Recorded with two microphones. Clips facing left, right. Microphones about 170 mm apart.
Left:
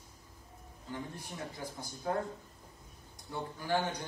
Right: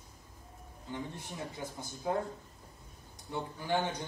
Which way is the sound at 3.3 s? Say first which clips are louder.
Even; 20° right (ahead or behind).